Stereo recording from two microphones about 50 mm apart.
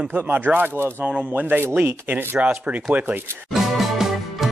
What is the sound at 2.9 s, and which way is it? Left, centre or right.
Speech, right.